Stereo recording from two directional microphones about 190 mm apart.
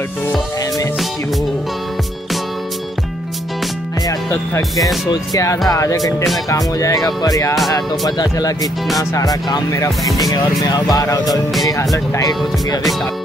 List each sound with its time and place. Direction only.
4.3 s speech: 15° left (ahead or behind)